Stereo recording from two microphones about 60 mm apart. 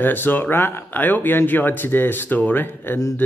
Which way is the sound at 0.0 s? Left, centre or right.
Left.